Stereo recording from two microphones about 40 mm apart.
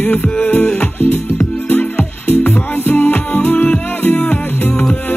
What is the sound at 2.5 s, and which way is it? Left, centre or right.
Music, left.